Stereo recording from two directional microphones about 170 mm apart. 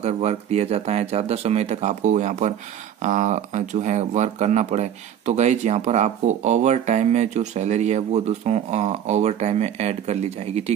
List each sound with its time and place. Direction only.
0.0 s speech: 40° right (ahead or behind)